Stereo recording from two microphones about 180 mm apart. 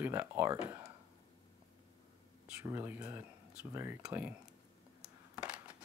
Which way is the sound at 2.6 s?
10° right (ahead or behind).